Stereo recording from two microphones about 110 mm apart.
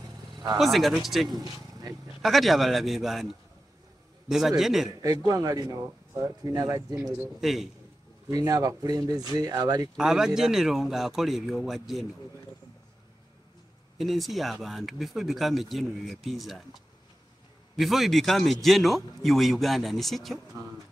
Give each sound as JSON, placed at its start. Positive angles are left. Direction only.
{"t": 0.6, "sound": "speech", "side_deg": 0}
{"t": 1.3, "sound": "speech", "side_deg": -35}
{"t": 2.2, "sound": "speech", "side_deg": 0}
{"t": 5.0, "sound": "speech", "side_deg": -35}
{"t": 7.3, "sound": "speech", "side_deg": 0}
{"t": 8.3, "sound": "speech", "side_deg": -35}
{"t": 9.9, "sound": "speech", "side_deg": -5}
{"t": 13.9, "sound": "speech", "side_deg": 0}
{"t": 17.7, "sound": "speech", "side_deg": 0}